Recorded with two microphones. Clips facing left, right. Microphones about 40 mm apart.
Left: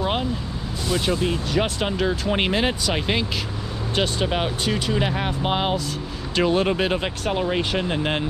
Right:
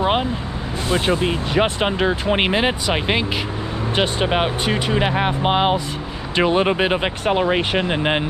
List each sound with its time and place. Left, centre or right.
0.0 s vehicle: right
0.8 s speech: right